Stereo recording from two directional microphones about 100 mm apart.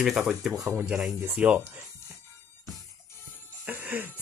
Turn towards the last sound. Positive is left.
turn(degrees=-20)  # may be behind; listen again after turning